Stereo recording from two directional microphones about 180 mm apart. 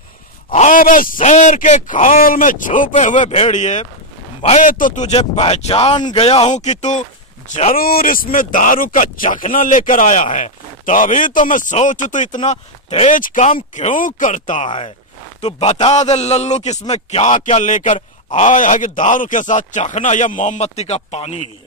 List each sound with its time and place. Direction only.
0.5 s a man's voice: 50° left (ahead or behind)